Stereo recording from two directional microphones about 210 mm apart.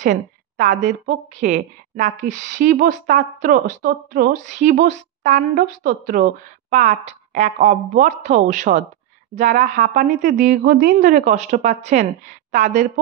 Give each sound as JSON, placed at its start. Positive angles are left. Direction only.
{"t": 0.0, "sound": "a woman's voice", "side_deg": -40}